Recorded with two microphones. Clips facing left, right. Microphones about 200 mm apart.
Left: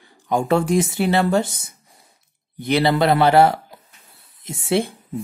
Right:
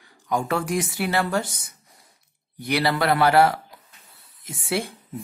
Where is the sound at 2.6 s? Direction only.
25° left (ahead or behind).